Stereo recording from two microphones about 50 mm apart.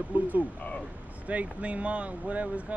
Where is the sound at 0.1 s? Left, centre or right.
Right.